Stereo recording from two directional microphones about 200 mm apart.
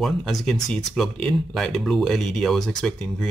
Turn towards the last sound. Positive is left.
turn(degrees=5)  # may be behind; listen again after turning